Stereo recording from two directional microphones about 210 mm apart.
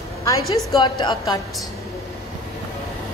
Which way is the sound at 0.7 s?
20° left (ahead or behind).